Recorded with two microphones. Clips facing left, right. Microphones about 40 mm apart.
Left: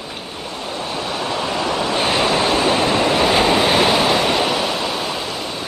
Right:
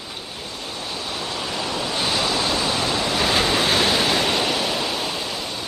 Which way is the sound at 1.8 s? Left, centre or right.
Left.